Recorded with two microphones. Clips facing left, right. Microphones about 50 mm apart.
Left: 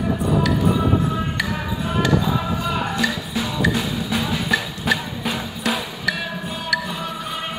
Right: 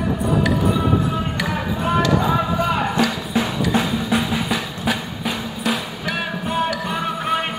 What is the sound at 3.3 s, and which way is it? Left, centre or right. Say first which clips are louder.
Drum: right 4 dB; right.